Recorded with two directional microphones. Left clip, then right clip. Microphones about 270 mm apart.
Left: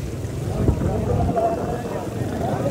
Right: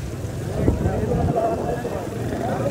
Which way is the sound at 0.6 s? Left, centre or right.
Centre.